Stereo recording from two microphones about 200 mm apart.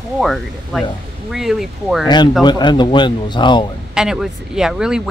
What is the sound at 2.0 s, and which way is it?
Speech, 20° left (ahead or behind).